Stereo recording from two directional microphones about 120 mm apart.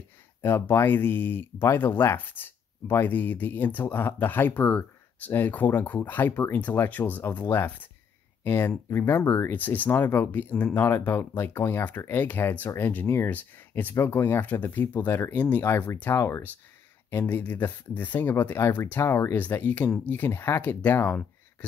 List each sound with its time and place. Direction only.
0.4 s speech: 20° left (ahead or behind)